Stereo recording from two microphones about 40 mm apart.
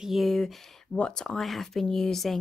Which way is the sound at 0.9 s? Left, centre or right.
Left.